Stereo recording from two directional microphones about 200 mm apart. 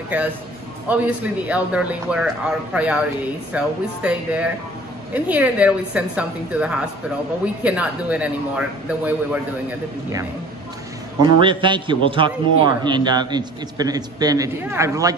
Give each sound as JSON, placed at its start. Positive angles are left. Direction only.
{"t": 0.1, "sound": "a man's voice", "side_deg": -10}
{"t": 11.2, "sound": "a man's voice", "side_deg": -25}